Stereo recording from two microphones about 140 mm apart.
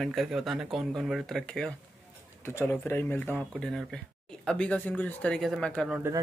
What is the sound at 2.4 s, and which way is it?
Speech, 15° left (ahead or behind).